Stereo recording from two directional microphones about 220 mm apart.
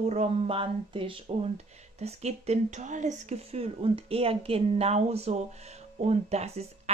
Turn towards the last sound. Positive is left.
turn(degrees=-30)  # may be behind; listen again after turning